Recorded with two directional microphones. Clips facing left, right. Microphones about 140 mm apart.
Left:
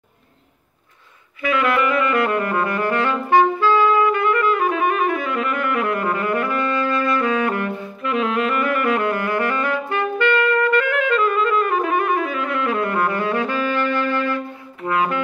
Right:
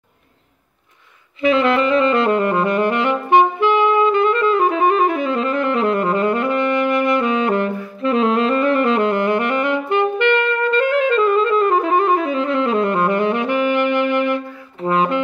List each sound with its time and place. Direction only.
1.4 s saxophone: 25° right (ahead or behind)